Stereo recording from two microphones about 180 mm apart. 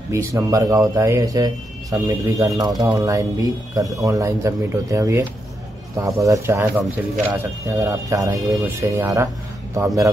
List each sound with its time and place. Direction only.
0.1 s speech: 15° right (ahead or behind)